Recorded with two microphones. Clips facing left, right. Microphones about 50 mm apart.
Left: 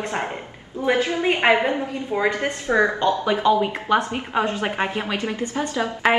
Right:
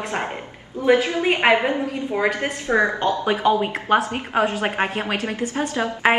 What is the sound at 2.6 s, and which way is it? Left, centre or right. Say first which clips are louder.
A woman's voice: even; right.